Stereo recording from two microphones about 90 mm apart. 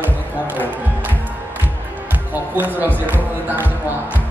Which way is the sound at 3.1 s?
20° right (ahead or behind).